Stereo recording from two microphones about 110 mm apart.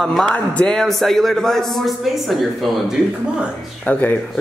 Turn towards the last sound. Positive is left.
turn(degrees=15)  # may be behind; listen again after turning